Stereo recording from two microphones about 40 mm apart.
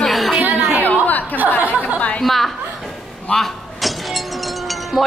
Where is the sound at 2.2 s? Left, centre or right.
Centre.